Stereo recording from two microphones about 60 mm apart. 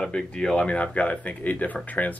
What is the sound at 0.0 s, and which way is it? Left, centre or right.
Speech, centre.